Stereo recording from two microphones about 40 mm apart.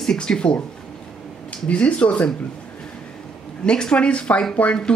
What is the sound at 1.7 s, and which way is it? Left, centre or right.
Speech, left.